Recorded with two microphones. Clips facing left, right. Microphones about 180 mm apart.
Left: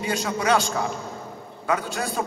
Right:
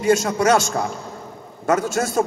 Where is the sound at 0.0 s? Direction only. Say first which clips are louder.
Right 8 dB; 45° right (ahead or behind).